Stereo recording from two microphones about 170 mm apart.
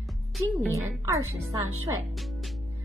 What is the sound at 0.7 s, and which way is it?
Speech, 20° right (ahead or behind).